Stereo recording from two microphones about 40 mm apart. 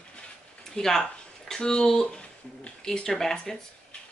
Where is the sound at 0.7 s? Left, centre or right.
Centre.